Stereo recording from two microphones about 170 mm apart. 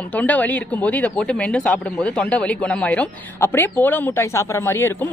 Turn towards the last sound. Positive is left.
turn(degrees=15)  # may be behind; listen again after turning